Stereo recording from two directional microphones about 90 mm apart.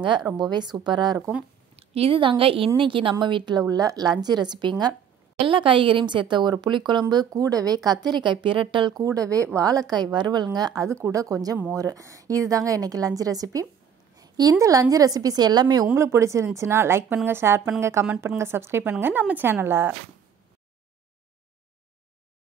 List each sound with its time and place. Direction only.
0.0 s a woman's voice: 60° right (ahead or behind)
1.8 s a woman's voice: 90° right
2.8 s a woman's voice: 75° right (ahead or behind)
3.6 s a woman's voice: 45° right (ahead or behind)
5.4 s a woman's voice: 75° right (ahead or behind); by 8.0 s 45° right (ahead or behind)
8.1 s a woman's voice: 60° right (ahead or behind)
8.9 s a woman's voice: 40° right (ahead or behind)
10.9 s a woman's voice: 35° right (ahead or behind); by 15.9 s 50° right (ahead or behind)
15.9 s a woman's voice: 30° right (ahead or behind)